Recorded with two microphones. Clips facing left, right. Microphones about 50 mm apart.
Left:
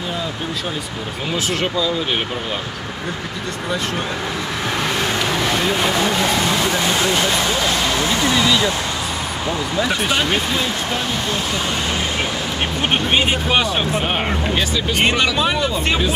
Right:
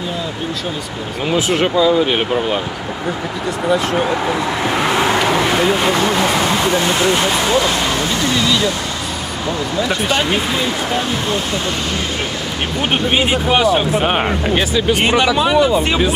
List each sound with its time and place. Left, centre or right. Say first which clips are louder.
1.3 s speech: right 6 dB; centre
3.7 s vehicle: right 7 dB; centre
5.7 s speech: right 3 dB; centre
8.4 s speech: right 1 dB; centre
9.8 s speech: right 2 dB; centre
13.1 s speech: right 3 dB; centre
14.0 s speech: right 4 dB; centre